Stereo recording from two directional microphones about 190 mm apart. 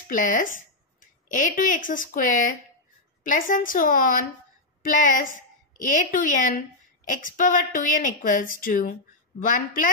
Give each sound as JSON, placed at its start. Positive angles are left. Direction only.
{"t": 0.1, "sound": "a woman's voice", "side_deg": 45}